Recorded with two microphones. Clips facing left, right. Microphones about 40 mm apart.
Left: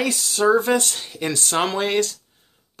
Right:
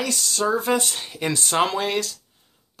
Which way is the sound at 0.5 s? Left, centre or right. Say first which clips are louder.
Left 3 dB; centre.